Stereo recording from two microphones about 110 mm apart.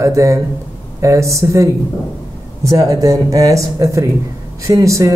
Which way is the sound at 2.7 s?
35° right (ahead or behind).